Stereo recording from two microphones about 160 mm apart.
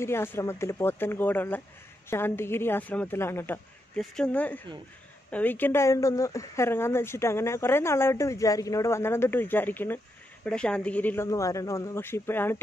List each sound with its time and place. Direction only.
0.0 s speech: 15° left (ahead or behind)